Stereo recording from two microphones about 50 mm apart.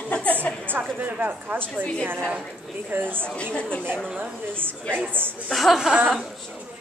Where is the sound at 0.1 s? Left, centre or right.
Left.